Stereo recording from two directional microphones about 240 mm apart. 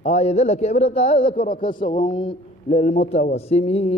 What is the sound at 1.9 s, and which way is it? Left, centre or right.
Speech, left.